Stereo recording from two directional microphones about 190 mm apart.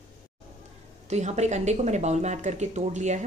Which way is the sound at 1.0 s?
35° right (ahead or behind).